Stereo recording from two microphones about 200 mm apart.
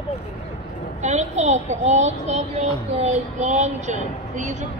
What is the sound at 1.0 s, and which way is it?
A child's voice, 35° right (ahead or behind).